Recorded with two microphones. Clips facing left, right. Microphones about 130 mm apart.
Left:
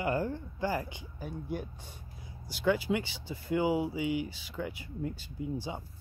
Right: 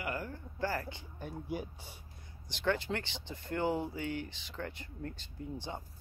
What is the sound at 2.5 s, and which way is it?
Speech, 10° left (ahead or behind).